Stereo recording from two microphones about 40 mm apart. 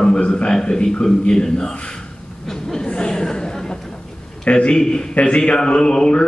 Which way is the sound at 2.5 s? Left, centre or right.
Centre.